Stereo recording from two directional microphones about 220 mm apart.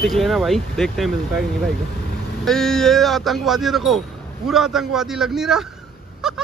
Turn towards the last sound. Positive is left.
turn(degrees=0)  # may be behind; listen again after turning